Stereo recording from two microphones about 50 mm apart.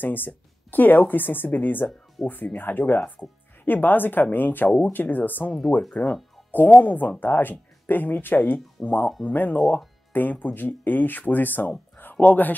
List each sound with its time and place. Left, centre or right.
0.0 s speech: left
9.6 s speech: centre
10.1 s speech: left